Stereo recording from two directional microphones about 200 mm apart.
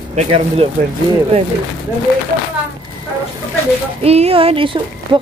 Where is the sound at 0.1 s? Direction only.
30° right (ahead or behind).